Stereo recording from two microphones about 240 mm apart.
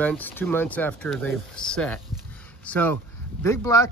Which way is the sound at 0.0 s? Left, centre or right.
Centre.